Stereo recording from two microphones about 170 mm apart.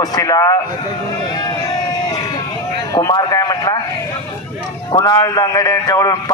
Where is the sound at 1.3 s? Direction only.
25° left (ahead or behind).